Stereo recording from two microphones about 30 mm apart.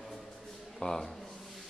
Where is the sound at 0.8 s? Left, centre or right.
Centre.